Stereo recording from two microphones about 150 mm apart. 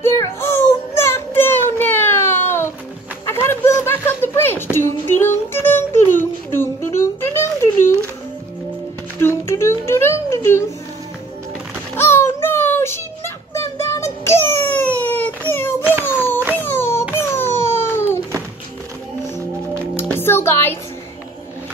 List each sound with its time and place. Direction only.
0.0 s baby cry: 15° left (ahead or behind)
3.3 s a sound: 15° left (ahead or behind)
4.7 s music: 15° left (ahead or behind)
9.2 s music: 15° left (ahead or behind)
11.9 s a sound: 15° left (ahead or behind)
20.2 s music: 15° left (ahead or behind)